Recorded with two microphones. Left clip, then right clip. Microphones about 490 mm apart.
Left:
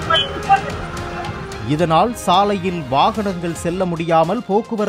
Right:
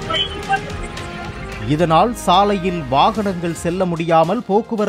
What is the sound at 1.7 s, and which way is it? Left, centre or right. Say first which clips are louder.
A man's voice: right 1 dB; centre.